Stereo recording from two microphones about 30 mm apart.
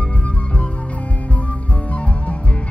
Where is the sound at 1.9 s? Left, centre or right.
Left.